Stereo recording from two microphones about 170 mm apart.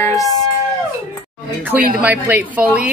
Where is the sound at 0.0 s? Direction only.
20° left (ahead or behind).